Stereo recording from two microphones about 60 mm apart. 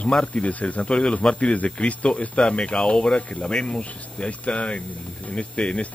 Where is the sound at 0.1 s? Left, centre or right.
Centre.